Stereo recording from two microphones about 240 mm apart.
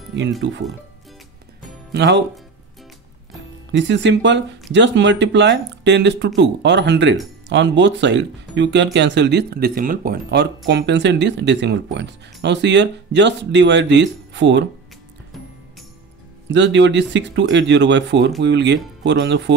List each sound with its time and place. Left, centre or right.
0.1 s speech: right
1.9 s speech: right
3.7 s speech: right
16.4 s speech: right